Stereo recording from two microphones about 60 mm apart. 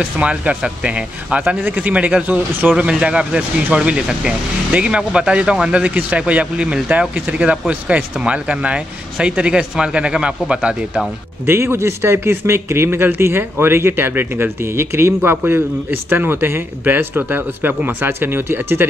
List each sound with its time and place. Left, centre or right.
0.2 s speech: right
11.4 s speech: right